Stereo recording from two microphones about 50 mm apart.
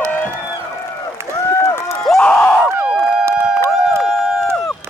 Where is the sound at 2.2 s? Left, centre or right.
Left.